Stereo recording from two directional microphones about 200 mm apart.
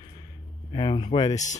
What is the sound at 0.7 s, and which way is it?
Speech, 25° left (ahead or behind).